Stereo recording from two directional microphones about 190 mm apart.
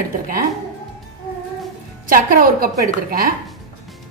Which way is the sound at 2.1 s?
45° right (ahead or behind).